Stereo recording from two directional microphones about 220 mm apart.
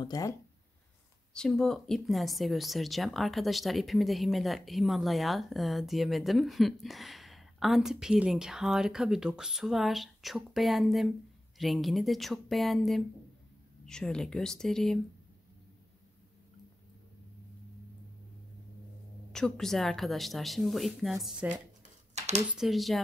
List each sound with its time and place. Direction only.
0.0 s speech: 15° left (ahead or behind)
1.3 s speech: 5° left (ahead or behind)
19.3 s speech: centre (ahead or behind)
22.1 s a sound: 30° right (ahead or behind)
22.5 s speech: centre (ahead or behind)